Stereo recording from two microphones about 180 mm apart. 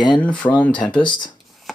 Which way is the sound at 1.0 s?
25° left (ahead or behind).